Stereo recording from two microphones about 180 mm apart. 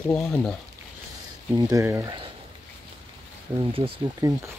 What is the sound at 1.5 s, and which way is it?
Speech, 20° right (ahead or behind).